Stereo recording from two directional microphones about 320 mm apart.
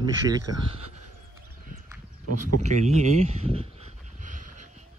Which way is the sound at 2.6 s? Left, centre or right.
Right.